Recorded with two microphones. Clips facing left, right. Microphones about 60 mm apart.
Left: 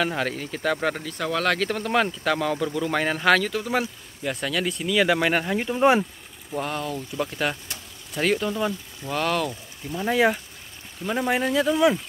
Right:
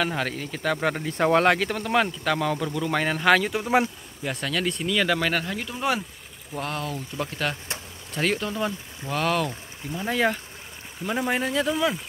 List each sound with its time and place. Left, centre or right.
0.0 s speech: centre
1.0 s speech: right
1.6 s speech: centre
3.4 s speech: centre
4.2 s speech: centre; by 6.0 s left
6.5 s speech: centre
9.9 s speech: centre